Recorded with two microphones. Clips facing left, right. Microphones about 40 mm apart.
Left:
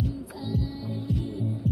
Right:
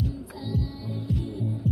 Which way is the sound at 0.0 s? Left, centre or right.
Centre.